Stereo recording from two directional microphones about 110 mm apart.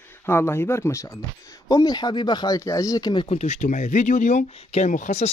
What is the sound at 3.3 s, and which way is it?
Speech, 90° left.